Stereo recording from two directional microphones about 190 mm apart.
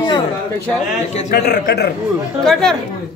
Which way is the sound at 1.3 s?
60° left (ahead or behind).